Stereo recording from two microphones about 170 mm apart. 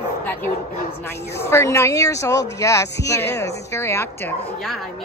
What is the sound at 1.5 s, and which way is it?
Speech, 15° left (ahead or behind).